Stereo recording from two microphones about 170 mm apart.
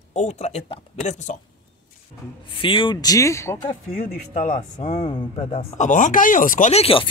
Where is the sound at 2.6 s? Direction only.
30° left (ahead or behind).